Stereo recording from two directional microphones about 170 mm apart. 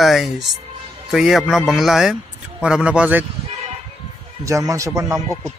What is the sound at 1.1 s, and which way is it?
Speech, centre (ahead or behind).